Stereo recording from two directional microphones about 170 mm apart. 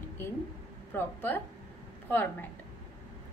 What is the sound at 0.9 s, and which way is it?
Speech, 10° left (ahead or behind).